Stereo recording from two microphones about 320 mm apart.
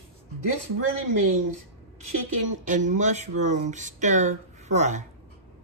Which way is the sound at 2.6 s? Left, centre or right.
Right.